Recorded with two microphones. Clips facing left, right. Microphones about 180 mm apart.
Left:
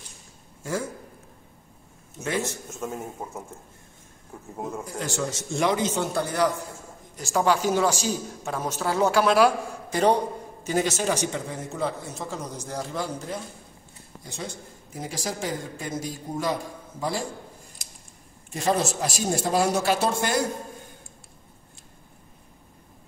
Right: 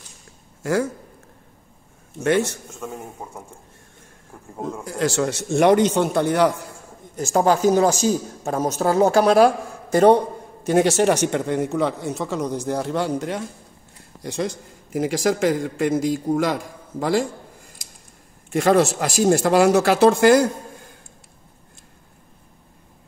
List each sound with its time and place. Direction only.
2.2 s speech: 70° right (ahead or behind)
2.7 s a man's voice: 5° left (ahead or behind)
4.5 s a man's voice: 5° left (ahead or behind)
4.8 s a man's voice: 90° right; by 6.6 s 65° right (ahead or behind)
7.2 s speech: 45° right (ahead or behind)
9.9 s a man's voice: 55° right (ahead or behind)
10.7 s a man's voice: 65° right (ahead or behind); by 17.3 s 90° right
18.5 s a man's voice: 85° right